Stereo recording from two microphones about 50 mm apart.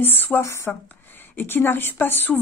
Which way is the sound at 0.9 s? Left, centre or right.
Left.